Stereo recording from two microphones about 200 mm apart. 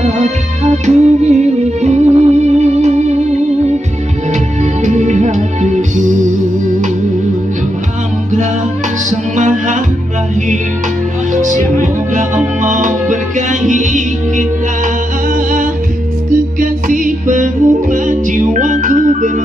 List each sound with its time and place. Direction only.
0.0 s music: 35° right (ahead or behind)
4.8 s music: 35° right (ahead or behind)
9.1 s music: 40° right (ahead or behind)
11.3 s music: 40° right (ahead or behind)
12.6 s music: 40° right (ahead or behind)
15.3 s humming: 40° right (ahead or behind)
16.5 s music: 40° right (ahead or behind)